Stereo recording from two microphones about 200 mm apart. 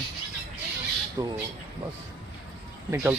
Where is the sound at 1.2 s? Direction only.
20° right (ahead or behind).